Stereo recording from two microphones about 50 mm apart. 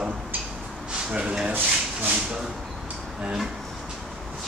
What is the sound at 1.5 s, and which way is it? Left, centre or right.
Speech, right.